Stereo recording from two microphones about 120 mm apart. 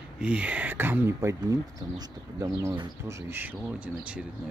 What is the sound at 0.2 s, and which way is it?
Speech, 10° right (ahead or behind).